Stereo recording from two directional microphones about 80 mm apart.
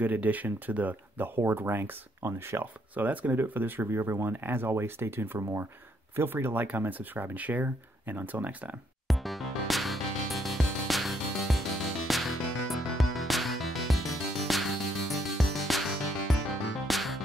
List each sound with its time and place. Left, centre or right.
0.0 s speech: right
2.6 s speech: right
9.0 s music: centre